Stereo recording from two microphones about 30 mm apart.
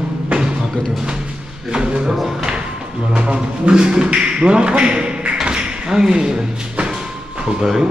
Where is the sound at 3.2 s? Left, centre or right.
Right.